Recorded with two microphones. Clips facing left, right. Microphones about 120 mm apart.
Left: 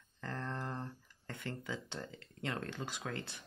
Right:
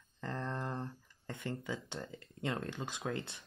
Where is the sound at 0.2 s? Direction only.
15° right (ahead or behind).